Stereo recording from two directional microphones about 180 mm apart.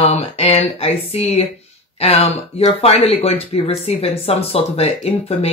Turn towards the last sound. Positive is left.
turn(degrees=35)  # may be behind; listen again after turning